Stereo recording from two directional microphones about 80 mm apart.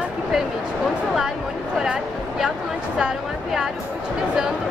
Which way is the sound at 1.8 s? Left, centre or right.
Centre.